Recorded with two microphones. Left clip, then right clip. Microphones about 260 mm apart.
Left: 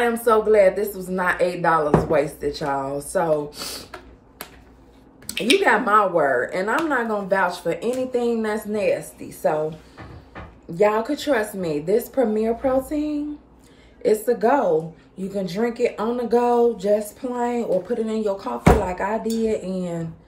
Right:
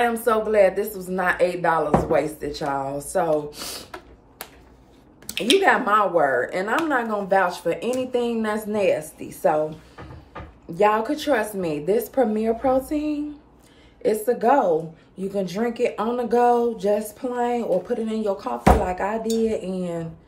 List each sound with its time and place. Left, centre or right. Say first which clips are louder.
0.2 s a woman's voice: left 4 dB; centre
10.7 s speech: even; centre